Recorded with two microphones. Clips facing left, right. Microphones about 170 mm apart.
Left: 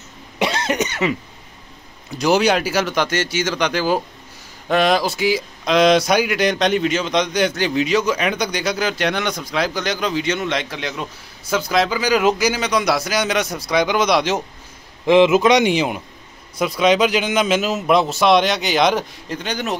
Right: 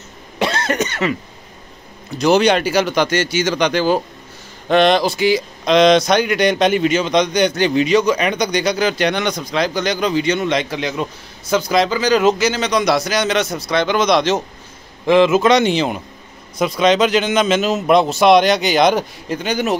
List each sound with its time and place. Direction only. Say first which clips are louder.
0.4 s cough: right 1 dB; 15° left (ahead or behind)
2.1 s a man's voice: right 3 dB; 10° left (ahead or behind)